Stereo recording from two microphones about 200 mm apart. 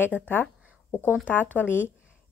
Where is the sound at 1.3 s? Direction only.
10° left (ahead or behind).